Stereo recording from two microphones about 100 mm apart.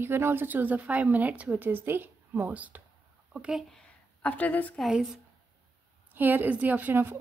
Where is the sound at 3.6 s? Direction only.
5° left (ahead or behind).